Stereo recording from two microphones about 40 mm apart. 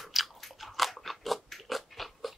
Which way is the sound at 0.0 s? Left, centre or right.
Centre.